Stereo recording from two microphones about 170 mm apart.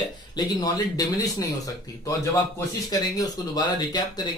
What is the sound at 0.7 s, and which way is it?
Speech, 20° left (ahead or behind).